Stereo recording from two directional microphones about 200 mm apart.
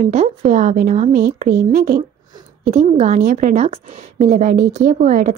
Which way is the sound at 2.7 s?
35° right (ahead or behind).